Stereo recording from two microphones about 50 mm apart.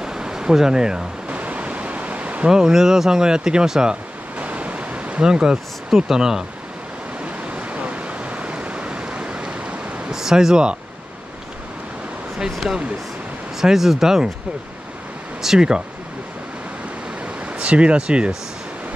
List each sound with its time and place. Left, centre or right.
0.0 s a sound: centre
1.3 s waves: right
2.4 s speech: centre
4.4 s pink noise: right
5.2 s speech: centre
7.4 s a sound: right
10.1 s speech: centre
12.6 s speech: centre
15.4 s speech: centre
17.2 s a sound: right